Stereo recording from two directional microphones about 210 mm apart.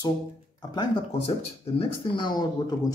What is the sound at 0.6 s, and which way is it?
Speech, 20° left (ahead or behind).